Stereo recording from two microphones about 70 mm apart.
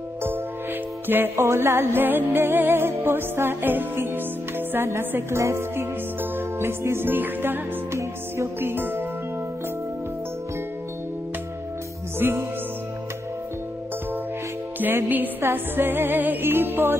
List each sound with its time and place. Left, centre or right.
1.0 s music: right
12.2 s music: right
14.8 s music: right